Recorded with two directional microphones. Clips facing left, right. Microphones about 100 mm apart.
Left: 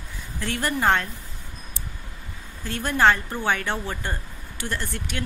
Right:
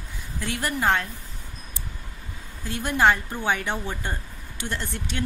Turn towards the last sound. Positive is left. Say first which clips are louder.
# left 1 dB
turn(degrees=-25)  # may be behind; listen again after turning